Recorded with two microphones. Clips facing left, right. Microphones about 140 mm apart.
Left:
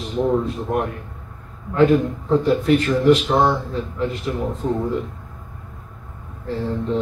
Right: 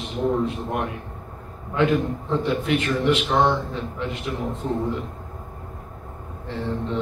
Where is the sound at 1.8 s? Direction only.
40° left (ahead or behind).